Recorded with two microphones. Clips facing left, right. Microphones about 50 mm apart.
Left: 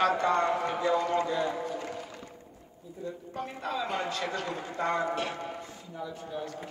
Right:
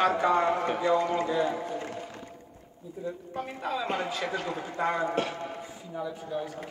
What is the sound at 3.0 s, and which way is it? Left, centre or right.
A man's voice, centre.